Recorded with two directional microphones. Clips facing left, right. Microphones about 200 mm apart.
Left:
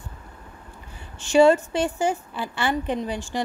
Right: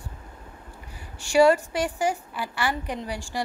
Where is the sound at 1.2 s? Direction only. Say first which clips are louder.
Left 2 dB; 25° left (ahead or behind).